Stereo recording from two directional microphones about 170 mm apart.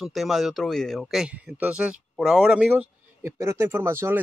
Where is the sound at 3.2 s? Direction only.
15° right (ahead or behind).